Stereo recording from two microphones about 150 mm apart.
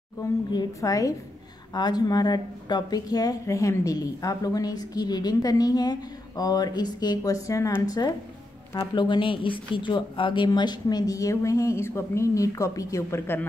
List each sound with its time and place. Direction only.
0.2 s speech: 25° left (ahead or behind)